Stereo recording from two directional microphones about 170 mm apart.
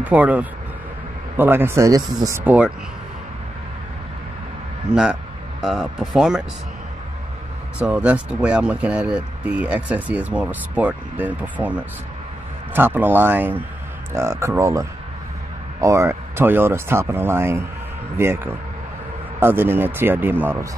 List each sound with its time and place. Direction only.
0.0 s speech: 10° right (ahead or behind)
4.9 s speech: 5° right (ahead or behind)
7.8 s speech: 10° right (ahead or behind)